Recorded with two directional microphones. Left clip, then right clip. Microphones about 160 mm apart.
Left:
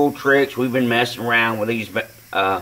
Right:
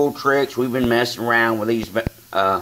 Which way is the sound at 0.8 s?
35° right (ahead or behind).